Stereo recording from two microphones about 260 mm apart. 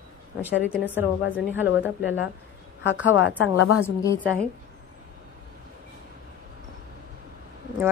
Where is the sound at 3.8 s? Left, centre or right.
Centre.